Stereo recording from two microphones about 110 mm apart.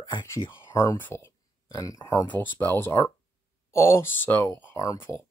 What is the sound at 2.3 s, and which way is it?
Speech, 15° left (ahead or behind).